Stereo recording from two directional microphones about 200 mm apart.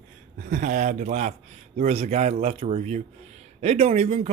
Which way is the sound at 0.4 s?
40° right (ahead or behind).